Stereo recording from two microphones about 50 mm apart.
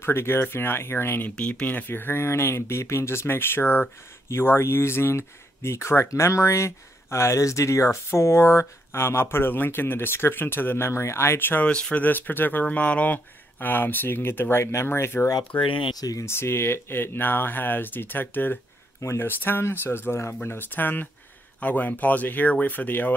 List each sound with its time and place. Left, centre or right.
0.0 s speech: left
1.5 s speech: left
4.3 s speech: left
10.9 s speech: left
11.6 s speech: left
20.4 s speech: left